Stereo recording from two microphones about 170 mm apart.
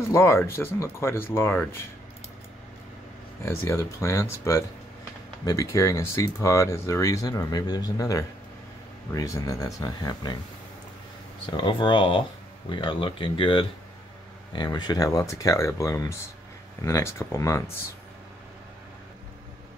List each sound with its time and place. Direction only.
0.1 s speech: 15° left (ahead or behind)
3.4 s speech: 15° left (ahead or behind)
11.5 s speech: 30° left (ahead or behind)